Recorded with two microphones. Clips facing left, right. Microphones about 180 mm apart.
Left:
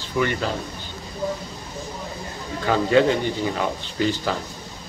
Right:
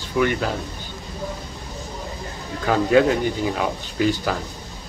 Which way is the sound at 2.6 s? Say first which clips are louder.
Right 1 dB; 5° right (ahead or behind).